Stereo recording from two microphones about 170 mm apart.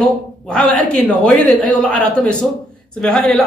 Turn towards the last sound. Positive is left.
turn(degrees=5)  # may be behind; listen again after turning